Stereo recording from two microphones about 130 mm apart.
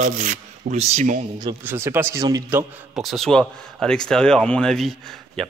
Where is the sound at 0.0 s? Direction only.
75° right (ahead or behind).